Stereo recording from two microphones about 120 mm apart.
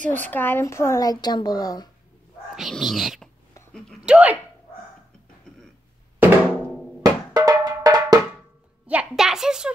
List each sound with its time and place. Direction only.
0.1 s speech: 15° left (ahead or behind); by 1.9 s 35° left (ahead or behind)
2.5 s a child's voice: centre (ahead or behind)
6.1 s drum: 15° right (ahead or behind)
7.0 s drum: 30° right (ahead or behind)
8.8 s a child's voice: 10° right (ahead or behind)